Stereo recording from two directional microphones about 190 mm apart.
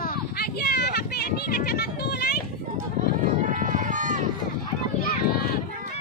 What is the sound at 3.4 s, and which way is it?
Run, 45° right (ahead or behind).